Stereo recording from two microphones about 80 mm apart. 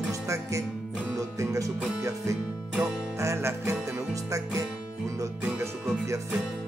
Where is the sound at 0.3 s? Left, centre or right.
Right.